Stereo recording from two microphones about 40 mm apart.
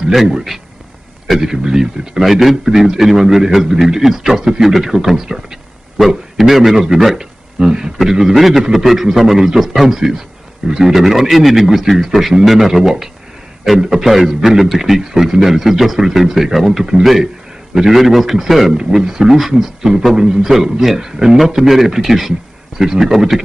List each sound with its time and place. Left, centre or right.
0.3 s a man's voice: centre
2.2 s a man's voice: centre
7.2 s a man's voice: centre